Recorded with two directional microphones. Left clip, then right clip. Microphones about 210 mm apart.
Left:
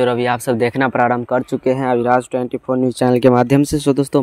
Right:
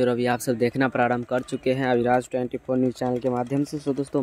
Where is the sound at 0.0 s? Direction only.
5° left (ahead or behind).